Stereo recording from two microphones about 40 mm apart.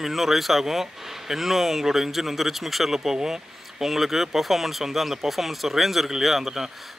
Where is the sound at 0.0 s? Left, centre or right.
Centre.